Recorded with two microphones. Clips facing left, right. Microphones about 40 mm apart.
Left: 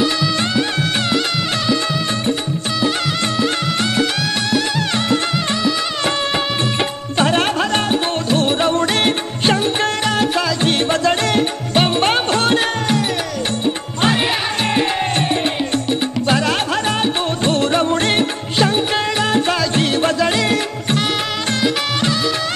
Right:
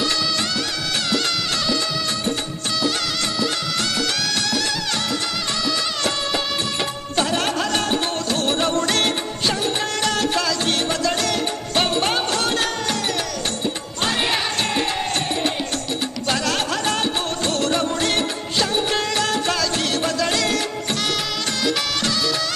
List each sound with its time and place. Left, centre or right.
3.9 s music: left
8.5 s music: centre
10.9 s music: left
12.5 s music: left
16.3 s music: left